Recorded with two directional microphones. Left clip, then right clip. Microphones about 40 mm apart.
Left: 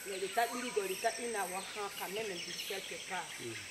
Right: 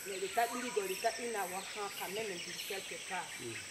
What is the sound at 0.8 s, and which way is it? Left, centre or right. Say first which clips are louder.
Speech: left 1 dB; centre.